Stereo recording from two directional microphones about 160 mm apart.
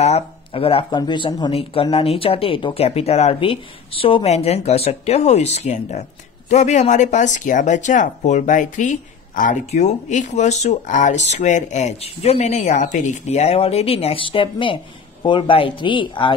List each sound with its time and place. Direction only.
0.0 s speech: 40° left (ahead or behind)